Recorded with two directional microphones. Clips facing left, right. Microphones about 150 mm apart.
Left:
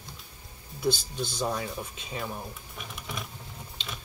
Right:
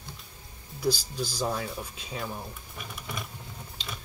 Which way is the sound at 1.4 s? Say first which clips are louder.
Even; centre (ahead or behind).